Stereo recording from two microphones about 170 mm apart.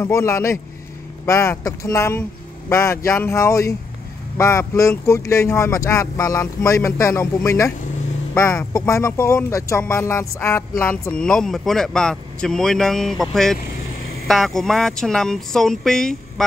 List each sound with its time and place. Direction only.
0.0 s speech: 15° left (ahead or behind)
8.7 s speech: 20° left (ahead or behind)